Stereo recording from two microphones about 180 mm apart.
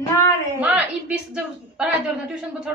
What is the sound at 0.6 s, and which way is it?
A woman's voice, 10° right (ahead or behind).